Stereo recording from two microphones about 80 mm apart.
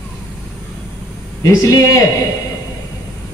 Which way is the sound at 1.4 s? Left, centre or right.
Left.